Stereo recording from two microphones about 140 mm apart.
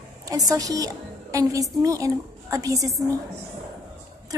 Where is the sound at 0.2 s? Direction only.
25° right (ahead or behind).